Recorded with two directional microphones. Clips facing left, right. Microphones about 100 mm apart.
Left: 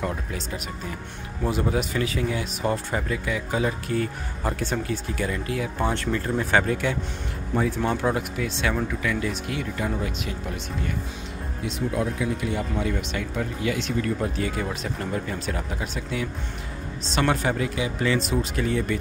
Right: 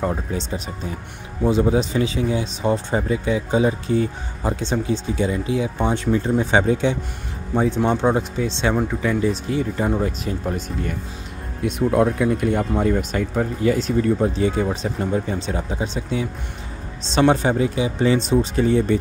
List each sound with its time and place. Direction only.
0.0 s speech: 30° right (ahead or behind)
1.6 s speech: 25° right (ahead or behind)
11.6 s speech: 60° right (ahead or behind); by 13.9 s 40° right (ahead or behind)
14.0 s speech: 25° right (ahead or behind)